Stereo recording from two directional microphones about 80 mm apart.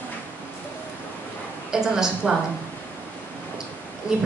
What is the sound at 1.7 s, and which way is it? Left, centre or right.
Speech, centre.